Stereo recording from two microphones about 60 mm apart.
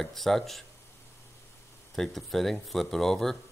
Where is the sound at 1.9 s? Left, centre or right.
Centre.